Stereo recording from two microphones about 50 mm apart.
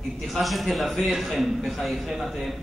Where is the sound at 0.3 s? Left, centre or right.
Centre.